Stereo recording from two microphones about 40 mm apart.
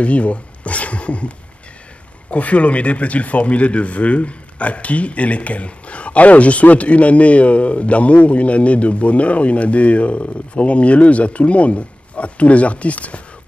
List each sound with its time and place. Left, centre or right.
0.0 s speech: left
2.3 s speech: left